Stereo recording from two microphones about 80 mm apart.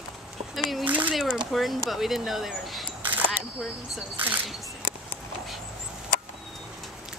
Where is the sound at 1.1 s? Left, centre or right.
Centre.